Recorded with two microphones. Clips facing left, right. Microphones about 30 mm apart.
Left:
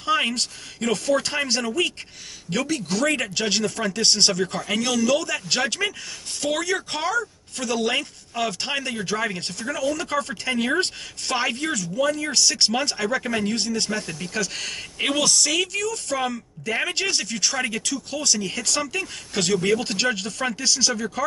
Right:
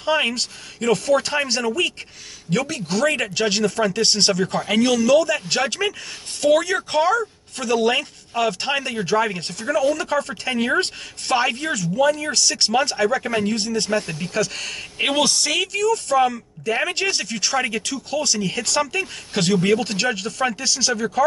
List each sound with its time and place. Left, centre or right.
0.0 s a man's voice: centre
4.6 s speech: centre
4.9 s a man's voice: centre
13.8 s speech: centre
14.3 s a man's voice: centre
15.0 s speech: centre